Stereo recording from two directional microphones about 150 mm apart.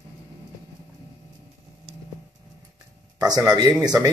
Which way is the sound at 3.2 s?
25° right (ahead or behind).